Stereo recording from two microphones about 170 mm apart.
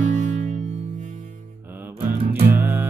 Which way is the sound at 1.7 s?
10° right (ahead or behind).